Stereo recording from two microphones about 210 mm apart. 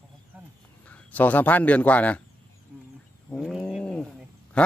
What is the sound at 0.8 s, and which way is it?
Speech, 5° left (ahead or behind).